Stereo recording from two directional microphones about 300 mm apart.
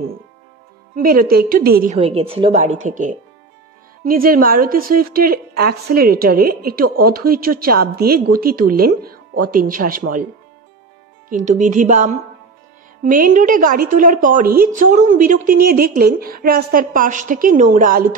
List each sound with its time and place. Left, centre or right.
0.9 s a woman's voice: right
11.2 s a woman's voice: right